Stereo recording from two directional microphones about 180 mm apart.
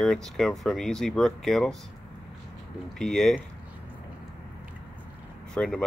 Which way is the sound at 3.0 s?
5° left (ahead or behind).